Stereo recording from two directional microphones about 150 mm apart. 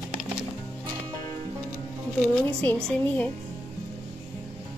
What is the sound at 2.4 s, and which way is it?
Speech, 10° left (ahead or behind).